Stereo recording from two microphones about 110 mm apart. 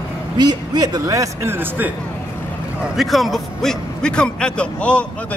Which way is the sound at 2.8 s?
Centre (ahead or behind).